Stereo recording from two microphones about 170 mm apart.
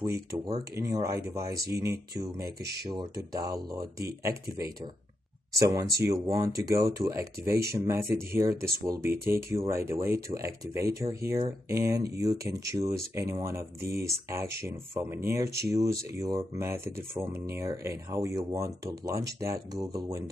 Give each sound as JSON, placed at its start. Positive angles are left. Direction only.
{"t": 0.0, "sound": "speech", "side_deg": -20}
{"t": 2.4, "sound": "speech", "side_deg": -70}
{"t": 3.4, "sound": "speech", "side_deg": -20}